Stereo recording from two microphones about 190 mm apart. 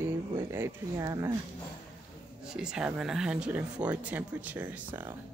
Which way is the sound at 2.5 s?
5° right (ahead or behind).